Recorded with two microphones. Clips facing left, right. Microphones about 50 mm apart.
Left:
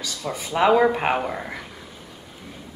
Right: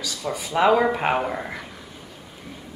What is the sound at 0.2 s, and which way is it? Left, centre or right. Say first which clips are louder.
Speech: right 1 dB; centre.